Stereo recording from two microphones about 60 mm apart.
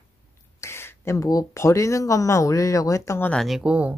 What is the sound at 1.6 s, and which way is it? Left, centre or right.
Speech, left.